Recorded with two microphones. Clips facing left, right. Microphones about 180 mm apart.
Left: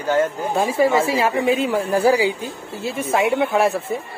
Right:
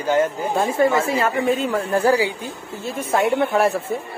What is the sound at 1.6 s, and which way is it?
Speech, 10° left (ahead or behind).